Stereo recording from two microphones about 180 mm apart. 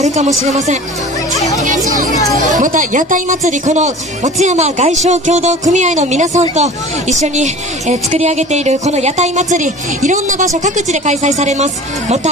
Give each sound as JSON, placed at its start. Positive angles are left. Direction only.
{"t": 0.0, "sound": "a woman's voice", "side_deg": -40}
{"t": 2.6, "sound": "a woman's voice", "side_deg": -45}